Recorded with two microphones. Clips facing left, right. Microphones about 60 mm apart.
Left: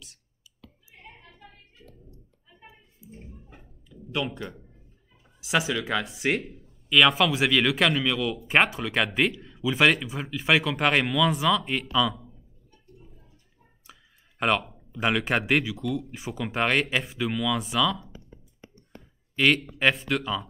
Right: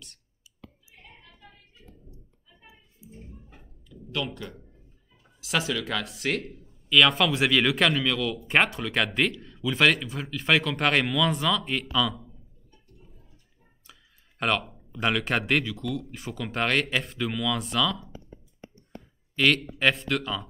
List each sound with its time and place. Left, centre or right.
2.6 s a sound: left
3.9 s a sound: centre
5.4 s speech: centre
6.4 s a man's voice: centre
14.4 s a man's voice: centre
19.3 s speech: centre